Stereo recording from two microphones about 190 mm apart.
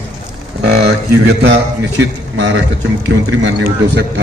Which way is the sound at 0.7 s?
60° right (ahead or behind).